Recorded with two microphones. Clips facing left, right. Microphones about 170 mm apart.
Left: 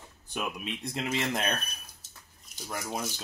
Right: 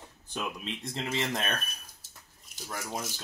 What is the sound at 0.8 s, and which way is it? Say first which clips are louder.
Speech: left 1 dB; 15° left (ahead or behind).